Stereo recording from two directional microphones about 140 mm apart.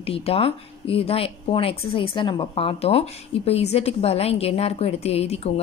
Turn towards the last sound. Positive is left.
turn(degrees=45)  # may be behind; listen again after turning